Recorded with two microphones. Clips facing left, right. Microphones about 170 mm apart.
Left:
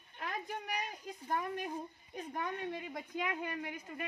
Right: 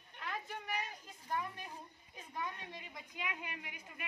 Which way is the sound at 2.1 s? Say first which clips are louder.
Left 5 dB; 50° left (ahead or behind).